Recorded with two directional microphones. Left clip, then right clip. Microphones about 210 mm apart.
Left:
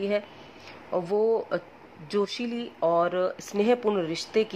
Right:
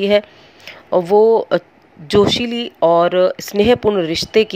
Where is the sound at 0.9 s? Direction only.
30° right (ahead or behind).